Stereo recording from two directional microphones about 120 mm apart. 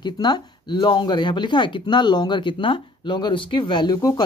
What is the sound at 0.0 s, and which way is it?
Speech, 35° left (ahead or behind).